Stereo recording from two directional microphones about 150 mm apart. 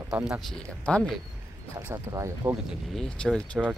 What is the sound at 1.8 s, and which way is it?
Speech, 20° right (ahead or behind).